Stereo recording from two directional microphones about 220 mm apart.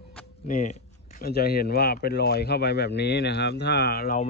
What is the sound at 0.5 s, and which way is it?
Speech, 35° left (ahead or behind).